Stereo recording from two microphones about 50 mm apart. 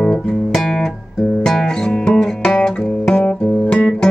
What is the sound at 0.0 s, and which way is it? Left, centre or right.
Music, centre.